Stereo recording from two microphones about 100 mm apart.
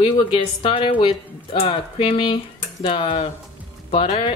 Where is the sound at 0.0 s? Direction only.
65° left (ahead or behind).